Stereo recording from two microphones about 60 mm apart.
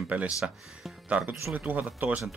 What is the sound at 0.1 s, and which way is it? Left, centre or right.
Speech, right.